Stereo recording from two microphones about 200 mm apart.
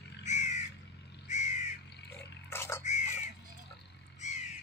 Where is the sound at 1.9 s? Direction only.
60° left (ahead or behind).